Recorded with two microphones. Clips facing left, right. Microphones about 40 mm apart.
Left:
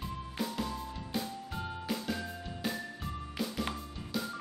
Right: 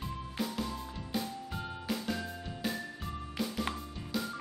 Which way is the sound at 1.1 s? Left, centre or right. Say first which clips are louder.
Right 1 dB; centre.